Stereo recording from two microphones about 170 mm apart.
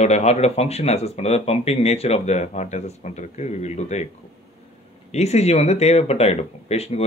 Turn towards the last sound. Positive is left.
turn(degrees=40)  # may be behind; listen again after turning